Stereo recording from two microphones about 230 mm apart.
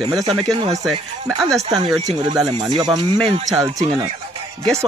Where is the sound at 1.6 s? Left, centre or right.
Centre.